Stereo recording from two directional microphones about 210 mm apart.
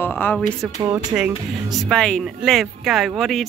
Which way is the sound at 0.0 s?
10° left (ahead or behind).